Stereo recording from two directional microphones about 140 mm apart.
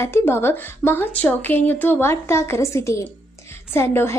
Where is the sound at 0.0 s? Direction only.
15° left (ahead or behind).